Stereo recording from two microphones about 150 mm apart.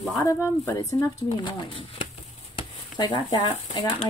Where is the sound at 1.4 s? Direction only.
35° left (ahead or behind).